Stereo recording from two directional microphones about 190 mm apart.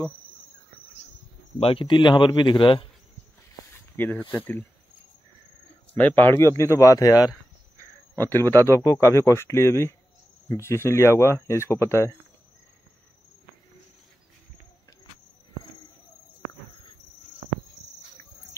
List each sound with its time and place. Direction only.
1.6 s speech: 30° left (ahead or behind)
3.9 s speech: 10° left (ahead or behind)
5.9 s speech: 10° left (ahead or behind)
8.3 s speech: 10° left (ahead or behind)